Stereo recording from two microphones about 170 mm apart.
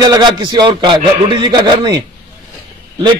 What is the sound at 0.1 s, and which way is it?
A man's voice, 25° right (ahead or behind).